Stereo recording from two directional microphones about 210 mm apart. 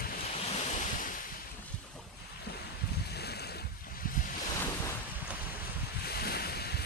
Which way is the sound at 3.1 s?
50° left (ahead or behind).